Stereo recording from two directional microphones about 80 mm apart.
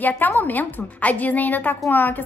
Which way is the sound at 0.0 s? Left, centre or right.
Left.